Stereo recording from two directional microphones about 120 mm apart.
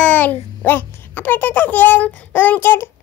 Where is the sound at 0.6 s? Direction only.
15° left (ahead or behind).